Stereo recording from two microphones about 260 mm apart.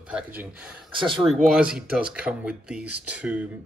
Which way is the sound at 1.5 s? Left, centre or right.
Centre.